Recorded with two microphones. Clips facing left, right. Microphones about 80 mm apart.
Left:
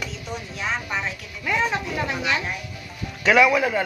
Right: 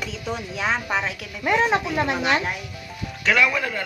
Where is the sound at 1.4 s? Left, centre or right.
Right.